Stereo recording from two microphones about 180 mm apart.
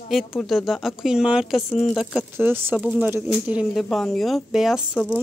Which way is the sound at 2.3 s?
10° right (ahead or behind).